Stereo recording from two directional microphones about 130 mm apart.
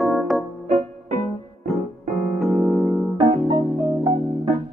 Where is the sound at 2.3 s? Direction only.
Centre (ahead or behind).